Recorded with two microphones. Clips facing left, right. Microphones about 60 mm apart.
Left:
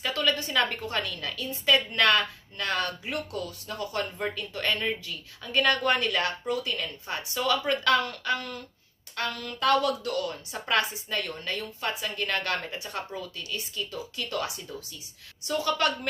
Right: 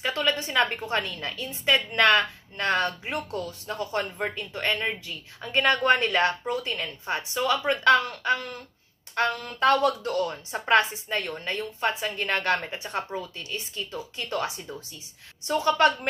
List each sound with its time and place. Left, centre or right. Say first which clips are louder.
0.0 s a woman's voice: right 1 dB; right